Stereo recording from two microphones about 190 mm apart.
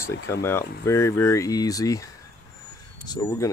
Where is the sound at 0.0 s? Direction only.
65° left (ahead or behind).